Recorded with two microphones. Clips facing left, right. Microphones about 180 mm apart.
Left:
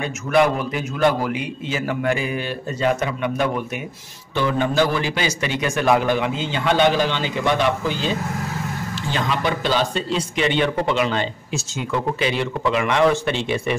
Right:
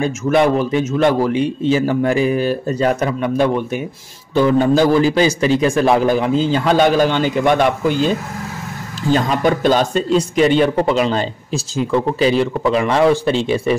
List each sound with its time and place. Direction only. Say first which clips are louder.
0.4 s speech: right 3 dB; 30° right (ahead or behind)